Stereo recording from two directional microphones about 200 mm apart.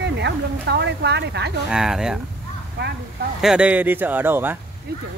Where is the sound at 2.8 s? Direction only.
55° right (ahead or behind).